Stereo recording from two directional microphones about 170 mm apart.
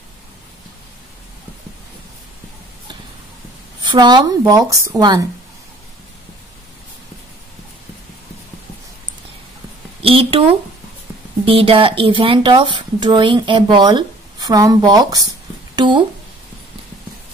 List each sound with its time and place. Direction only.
3.8 s speech: 25° right (ahead or behind)
10.0 s speech: 30° right (ahead or behind)
11.4 s speech: 35° right (ahead or behind)
15.7 s a sound: 25° right (ahead or behind)